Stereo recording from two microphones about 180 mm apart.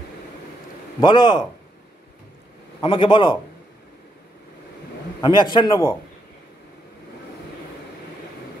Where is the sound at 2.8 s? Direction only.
30° left (ahead or behind).